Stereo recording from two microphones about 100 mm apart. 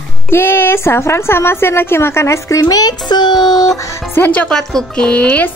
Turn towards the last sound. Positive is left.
turn(degrees=15)  # may be behind; listen again after turning